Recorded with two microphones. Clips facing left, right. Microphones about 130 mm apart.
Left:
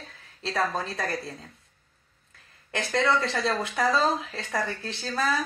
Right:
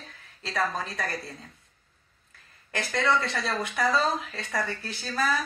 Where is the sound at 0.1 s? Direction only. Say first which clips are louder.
Left 3 dB; 30° left (ahead or behind).